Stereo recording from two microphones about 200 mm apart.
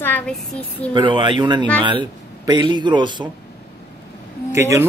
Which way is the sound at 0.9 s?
25° right (ahead or behind).